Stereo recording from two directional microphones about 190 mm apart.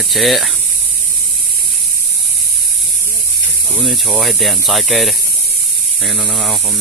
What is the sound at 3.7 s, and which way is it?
Speech, centre (ahead or behind).